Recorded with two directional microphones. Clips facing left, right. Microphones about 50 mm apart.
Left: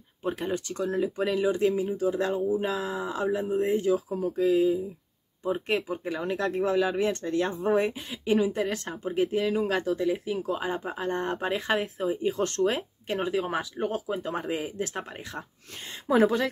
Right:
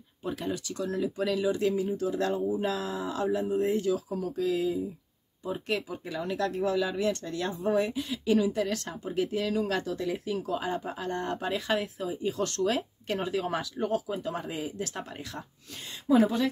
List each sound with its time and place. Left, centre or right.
0.2 s speech: left
2.3 s speech: centre
3.1 s speech: left
5.4 s speech: left
16.1 s speech: left